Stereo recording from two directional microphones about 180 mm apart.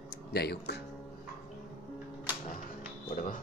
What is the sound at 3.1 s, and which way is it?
Music, 45° left (ahead or behind).